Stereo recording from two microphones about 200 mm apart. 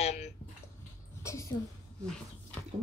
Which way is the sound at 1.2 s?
15° left (ahead or behind).